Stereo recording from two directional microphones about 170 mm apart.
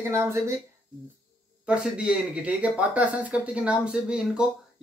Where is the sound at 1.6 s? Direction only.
5° right (ahead or behind).